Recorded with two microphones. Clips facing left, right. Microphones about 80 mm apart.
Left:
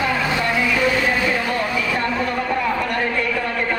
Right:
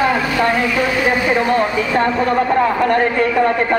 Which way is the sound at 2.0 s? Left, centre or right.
Right.